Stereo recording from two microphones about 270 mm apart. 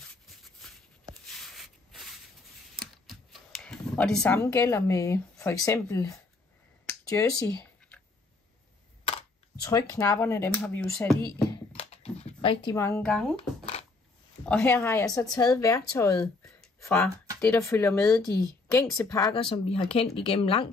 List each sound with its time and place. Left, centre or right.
1.2 s rub: centre
2.7 s computer keyboard: centre
9.6 s a woman's voice: centre
11.5 s a sound: left; by 13.2 s centre
14.5 s a woman's voice: centre; by 20.7 s left